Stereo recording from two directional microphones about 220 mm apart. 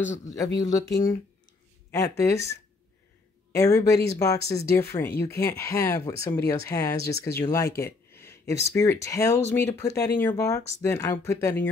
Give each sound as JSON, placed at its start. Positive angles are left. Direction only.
{"t": 0.6, "sound": "speech", "side_deg": 15}